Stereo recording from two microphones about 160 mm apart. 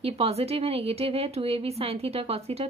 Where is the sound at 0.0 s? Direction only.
40° right (ahead or behind).